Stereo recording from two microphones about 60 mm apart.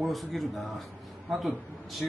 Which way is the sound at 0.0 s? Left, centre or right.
Centre.